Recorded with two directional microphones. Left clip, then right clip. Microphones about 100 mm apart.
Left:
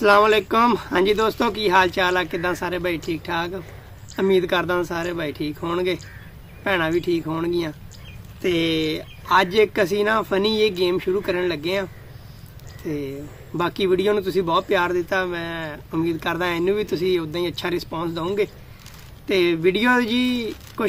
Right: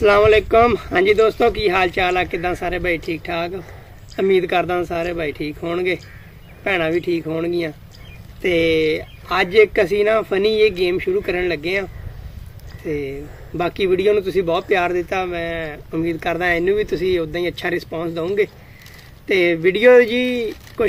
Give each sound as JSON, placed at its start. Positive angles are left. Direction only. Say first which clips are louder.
{"t": 0.0, "sound": "speech", "louder": "right 3 dB", "side_deg": 25}